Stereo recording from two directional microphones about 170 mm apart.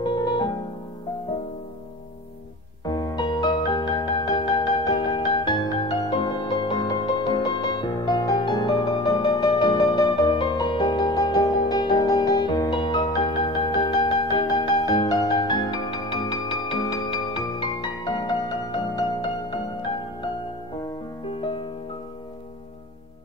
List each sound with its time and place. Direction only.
0.0 s music: 25° left (ahead or behind)
2.8 s music: 25° left (ahead or behind)
13.2 s music: 35° left (ahead or behind)
13.7 s music: 25° left (ahead or behind)
21.4 s music: 30° left (ahead or behind)